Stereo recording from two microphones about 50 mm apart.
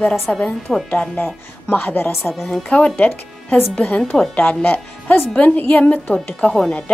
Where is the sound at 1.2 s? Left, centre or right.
Left.